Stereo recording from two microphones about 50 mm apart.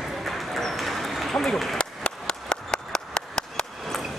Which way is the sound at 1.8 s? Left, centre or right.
Centre.